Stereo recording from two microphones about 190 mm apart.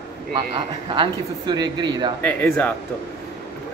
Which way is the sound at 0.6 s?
25° right (ahead or behind).